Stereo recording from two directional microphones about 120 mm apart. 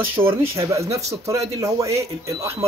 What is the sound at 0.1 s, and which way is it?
Speech, 20° right (ahead or behind).